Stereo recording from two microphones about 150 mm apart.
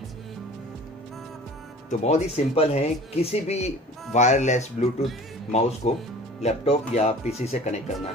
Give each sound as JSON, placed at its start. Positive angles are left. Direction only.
{"t": 1.9, "sound": "speech", "side_deg": 50}